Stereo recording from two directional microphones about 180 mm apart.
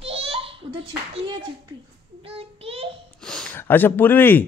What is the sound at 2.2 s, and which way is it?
Child singing, 35° right (ahead or behind).